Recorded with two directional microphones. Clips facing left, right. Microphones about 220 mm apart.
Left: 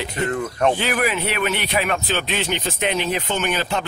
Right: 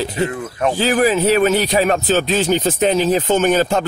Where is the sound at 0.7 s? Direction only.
30° right (ahead or behind).